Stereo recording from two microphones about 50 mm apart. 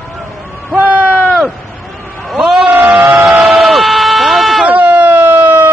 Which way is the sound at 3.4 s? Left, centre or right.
Centre.